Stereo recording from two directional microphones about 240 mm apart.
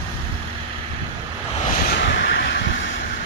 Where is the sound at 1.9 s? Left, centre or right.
Left.